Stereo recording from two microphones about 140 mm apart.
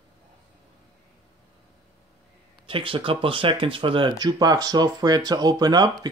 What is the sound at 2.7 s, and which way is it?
Speech, 40° right (ahead or behind).